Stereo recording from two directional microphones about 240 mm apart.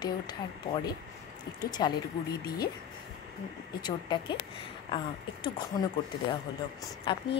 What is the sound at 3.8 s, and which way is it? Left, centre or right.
Speech, centre.